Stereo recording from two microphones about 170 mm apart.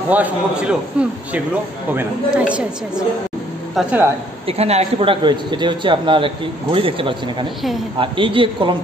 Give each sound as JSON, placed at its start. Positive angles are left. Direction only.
{"t": 0.1, "sound": "a man's voice", "side_deg": -10}
{"t": 4.5, "sound": "a man's voice", "side_deg": -40}